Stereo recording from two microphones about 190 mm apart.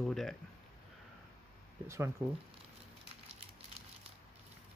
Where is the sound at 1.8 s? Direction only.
15° right (ahead or behind).